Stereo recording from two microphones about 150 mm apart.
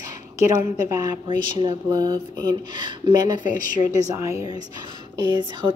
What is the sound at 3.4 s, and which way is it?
Speech, 60° left (ahead or behind).